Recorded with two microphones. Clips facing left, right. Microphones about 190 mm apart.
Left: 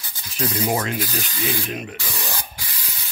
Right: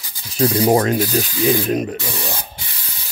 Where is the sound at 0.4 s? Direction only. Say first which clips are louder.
Right 8 dB; 30° right (ahead or behind).